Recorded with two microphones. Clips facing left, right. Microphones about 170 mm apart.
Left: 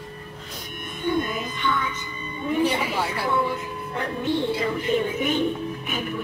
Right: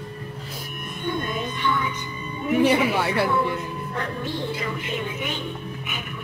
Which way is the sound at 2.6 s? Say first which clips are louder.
Right 5 dB; 65° right (ahead or behind).